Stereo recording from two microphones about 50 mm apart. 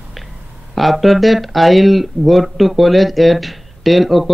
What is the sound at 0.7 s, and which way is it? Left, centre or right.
Speech, centre.